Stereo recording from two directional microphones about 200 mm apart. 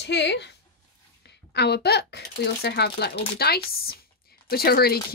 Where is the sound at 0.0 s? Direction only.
60° left (ahead or behind).